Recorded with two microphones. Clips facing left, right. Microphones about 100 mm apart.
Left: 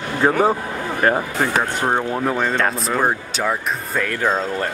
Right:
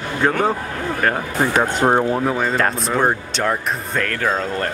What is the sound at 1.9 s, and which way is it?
Speech, 15° right (ahead or behind).